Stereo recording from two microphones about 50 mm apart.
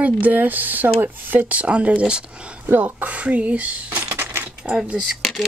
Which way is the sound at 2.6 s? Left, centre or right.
Right.